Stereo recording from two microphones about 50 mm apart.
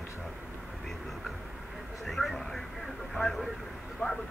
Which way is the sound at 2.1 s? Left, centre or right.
Centre.